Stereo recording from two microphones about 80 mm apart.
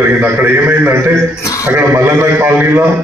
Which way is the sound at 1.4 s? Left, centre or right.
Left.